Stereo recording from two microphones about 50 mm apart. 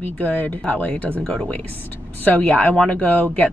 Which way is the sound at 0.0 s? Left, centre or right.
Left.